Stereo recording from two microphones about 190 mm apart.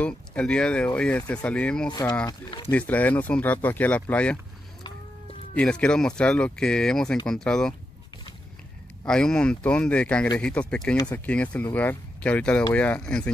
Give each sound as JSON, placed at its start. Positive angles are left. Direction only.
{"t": 0.0, "sound": "speech", "side_deg": 5}
{"t": 1.9, "sound": "speech", "side_deg": 20}
{"t": 2.7, "sound": "speech", "side_deg": 10}
{"t": 5.5, "sound": "speech", "side_deg": 5}
{"t": 9.0, "sound": "speech", "side_deg": 5}